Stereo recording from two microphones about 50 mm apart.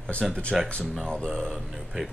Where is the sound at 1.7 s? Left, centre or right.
Centre.